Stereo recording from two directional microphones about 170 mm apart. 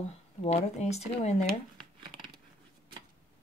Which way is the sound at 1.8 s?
30° right (ahead or behind).